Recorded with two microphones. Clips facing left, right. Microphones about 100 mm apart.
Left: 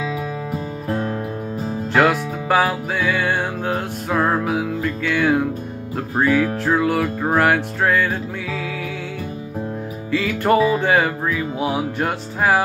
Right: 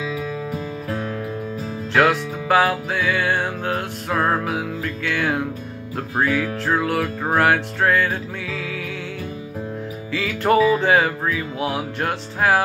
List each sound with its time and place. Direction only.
0.8 s music: 45° left (ahead or behind)
2.0 s music: 5° left (ahead or behind)
10.1 s music: centre (ahead or behind)